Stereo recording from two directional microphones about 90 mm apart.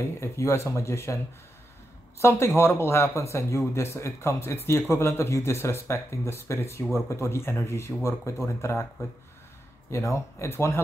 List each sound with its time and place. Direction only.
0.0 s speech: 30° left (ahead or behind)
9.8 s speech: 30° left (ahead or behind)